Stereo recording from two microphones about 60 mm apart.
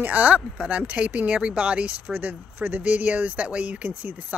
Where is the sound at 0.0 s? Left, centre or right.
Right.